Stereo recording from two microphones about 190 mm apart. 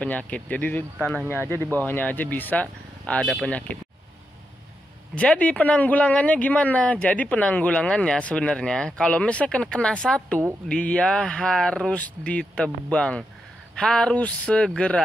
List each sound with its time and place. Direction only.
0.0 s speech: 5° left (ahead or behind)
5.1 s speech: 5° left (ahead or behind)